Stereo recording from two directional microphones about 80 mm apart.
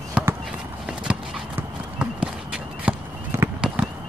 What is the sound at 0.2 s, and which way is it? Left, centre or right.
Run, centre.